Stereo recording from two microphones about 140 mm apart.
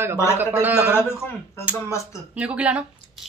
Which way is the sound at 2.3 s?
10° right (ahead or behind).